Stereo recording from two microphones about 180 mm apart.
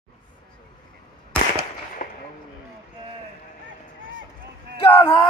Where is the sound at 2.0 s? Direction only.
50° left (ahead or behind).